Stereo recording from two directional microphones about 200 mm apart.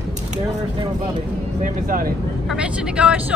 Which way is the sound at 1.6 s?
45° right (ahead or behind).